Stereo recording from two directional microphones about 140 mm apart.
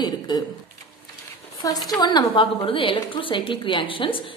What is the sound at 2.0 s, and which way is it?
A woman's voice, 30° left (ahead or behind).